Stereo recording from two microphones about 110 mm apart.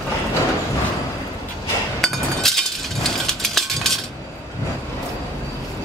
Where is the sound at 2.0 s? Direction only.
5° left (ahead or behind).